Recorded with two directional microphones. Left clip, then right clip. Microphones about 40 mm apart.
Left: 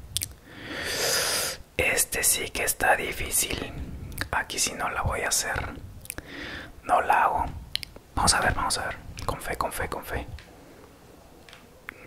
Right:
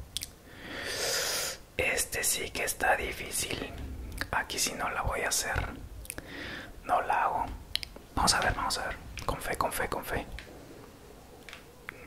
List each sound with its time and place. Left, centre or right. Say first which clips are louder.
0.1 s a sound: left 6 dB; left
3.4 s whispering: left 4 dB; centre
6.9 s speech: left 6 dB; left
7.7 s whispering: left 3 dB; centre
8.5 s speech: left 4 dB; left
9.4 s speech: left 1 dB; centre
11.9 s a sound: left 3 dB; centre